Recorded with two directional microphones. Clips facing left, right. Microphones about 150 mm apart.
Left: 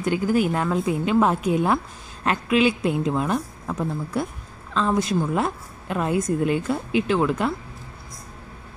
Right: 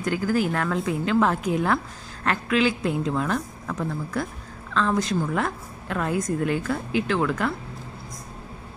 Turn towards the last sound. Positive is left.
turn(degrees=20)  # may be behind; listen again after turning